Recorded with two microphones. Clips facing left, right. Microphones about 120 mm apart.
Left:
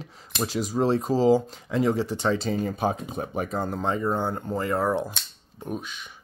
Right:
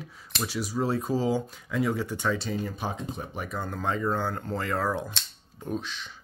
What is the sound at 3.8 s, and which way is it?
Speech, 20° left (ahead or behind).